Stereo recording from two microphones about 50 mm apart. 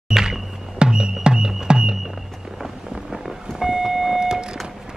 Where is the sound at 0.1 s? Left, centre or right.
Centre.